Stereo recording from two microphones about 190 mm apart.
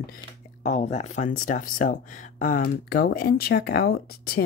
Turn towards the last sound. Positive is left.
turn(degrees=55)  # may be behind; listen again after turning